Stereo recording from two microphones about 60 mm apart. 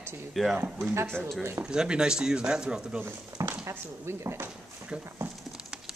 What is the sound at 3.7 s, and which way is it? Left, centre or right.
Speech, right.